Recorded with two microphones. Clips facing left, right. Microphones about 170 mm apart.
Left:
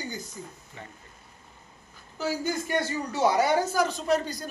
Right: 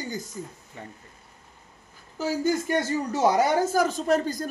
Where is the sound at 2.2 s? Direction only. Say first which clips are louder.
Right 4 dB; 45° right (ahead or behind).